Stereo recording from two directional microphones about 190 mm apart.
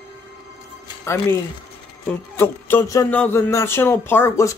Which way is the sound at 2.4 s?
10° left (ahead or behind).